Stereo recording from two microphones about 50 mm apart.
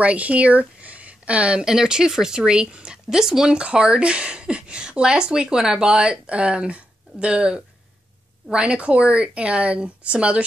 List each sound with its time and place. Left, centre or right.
0.0 s speech: right